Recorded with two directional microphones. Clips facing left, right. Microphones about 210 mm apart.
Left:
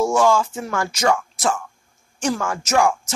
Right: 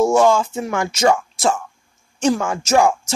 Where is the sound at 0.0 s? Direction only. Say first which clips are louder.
Right 3 dB; 20° right (ahead or behind).